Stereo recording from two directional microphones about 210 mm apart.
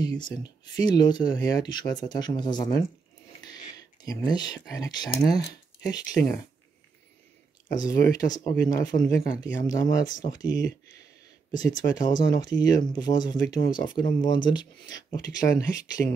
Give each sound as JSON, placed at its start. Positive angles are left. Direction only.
{"t": 0.0, "sound": "speech", "side_deg": 20}
{"t": 5.5, "sound": "a sound", "side_deg": 20}
{"t": 7.8, "sound": "speech", "side_deg": 20}